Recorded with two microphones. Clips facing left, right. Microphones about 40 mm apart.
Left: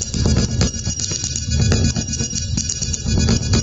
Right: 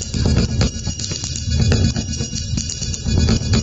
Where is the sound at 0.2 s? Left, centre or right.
Centre.